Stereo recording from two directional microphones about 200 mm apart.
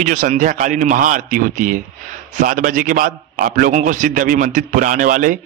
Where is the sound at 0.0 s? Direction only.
35° right (ahead or behind).